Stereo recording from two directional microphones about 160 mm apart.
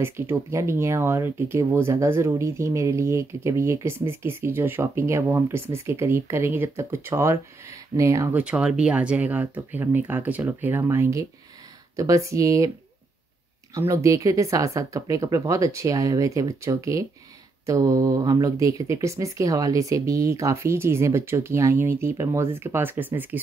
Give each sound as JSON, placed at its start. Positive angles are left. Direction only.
{"t": 0.0, "sound": "speech", "side_deg": -15}
{"t": 13.7, "sound": "speech", "side_deg": -20}